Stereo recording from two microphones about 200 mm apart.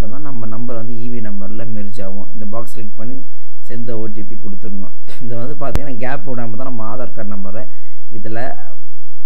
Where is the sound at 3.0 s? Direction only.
5° left (ahead or behind).